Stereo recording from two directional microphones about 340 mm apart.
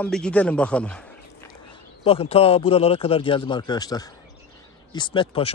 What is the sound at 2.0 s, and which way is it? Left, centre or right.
Speech, centre.